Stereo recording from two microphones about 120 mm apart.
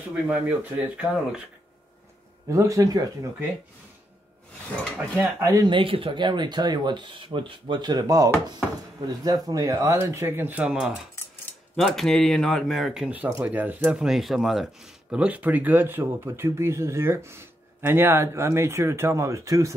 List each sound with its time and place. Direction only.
0.1 s speech: 10° right (ahead or behind)
2.5 s speech: 25° right (ahead or behind)
5.4 s speech: 25° right (ahead or behind)
5.7 s speech: 45° right (ahead or behind); by 11.0 s 5° right (ahead or behind)
11.7 s speech: 5° left (ahead or behind); by 19.7 s 25° right (ahead or behind)